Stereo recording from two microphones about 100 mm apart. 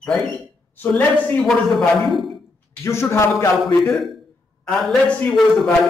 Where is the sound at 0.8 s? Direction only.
15° left (ahead or behind); by 2.4 s centre (ahead or behind).